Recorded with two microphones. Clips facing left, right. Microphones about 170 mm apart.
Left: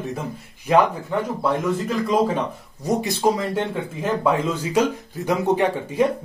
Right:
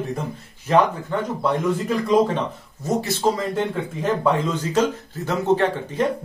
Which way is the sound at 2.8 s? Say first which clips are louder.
Left 1 dB; 15° left (ahead or behind).